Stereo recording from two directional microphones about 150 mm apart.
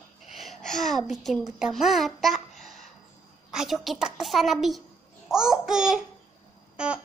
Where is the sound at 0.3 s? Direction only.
Centre (ahead or behind).